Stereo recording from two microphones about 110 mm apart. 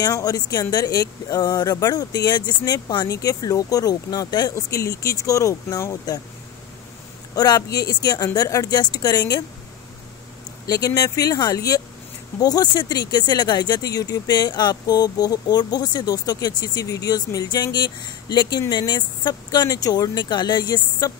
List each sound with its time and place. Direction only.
0.0 s speech: 35° left (ahead or behind)
7.3 s speech: 35° left (ahead or behind)
11.0 s speech: 35° left (ahead or behind)